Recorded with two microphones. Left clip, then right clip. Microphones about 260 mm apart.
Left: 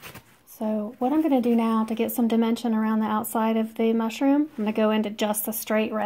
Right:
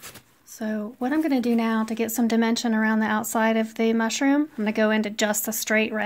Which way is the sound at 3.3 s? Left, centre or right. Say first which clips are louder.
Right 5 dB; right.